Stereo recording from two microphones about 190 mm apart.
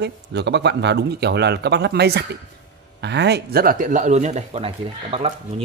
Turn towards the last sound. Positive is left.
turn(degrees=-30)  # may be behind; listen again after turning